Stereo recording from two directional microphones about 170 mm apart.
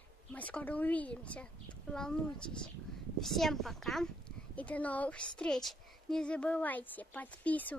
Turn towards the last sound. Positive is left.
turn(degrees=10)  # may be behind; listen again after turning